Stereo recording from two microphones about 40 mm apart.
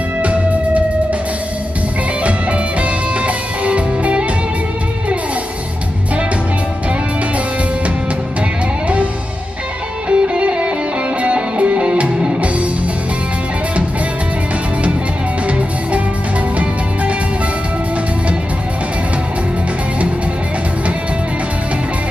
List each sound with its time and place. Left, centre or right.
0.2 s music: right
2.2 s music: right
10.0 s music: right